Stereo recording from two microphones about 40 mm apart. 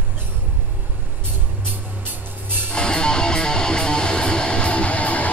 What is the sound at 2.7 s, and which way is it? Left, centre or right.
Music, left.